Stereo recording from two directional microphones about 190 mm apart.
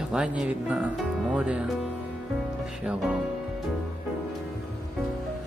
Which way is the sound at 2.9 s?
5° right (ahead or behind).